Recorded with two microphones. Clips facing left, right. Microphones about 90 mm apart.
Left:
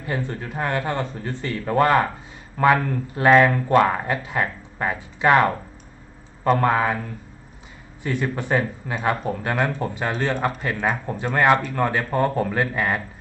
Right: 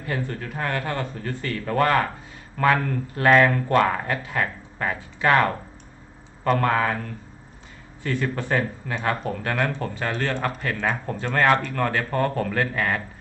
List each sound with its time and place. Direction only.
0.0 s a man's voice: 20° left (ahead or behind)
8.0 s speech: 15° left (ahead or behind)